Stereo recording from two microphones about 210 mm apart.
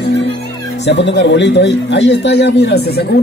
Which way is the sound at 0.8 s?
55° left (ahead or behind).